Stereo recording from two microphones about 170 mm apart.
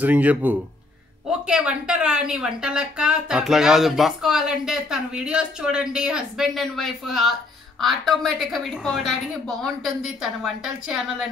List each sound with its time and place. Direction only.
0.0 s a woman's voice: 10° right (ahead or behind)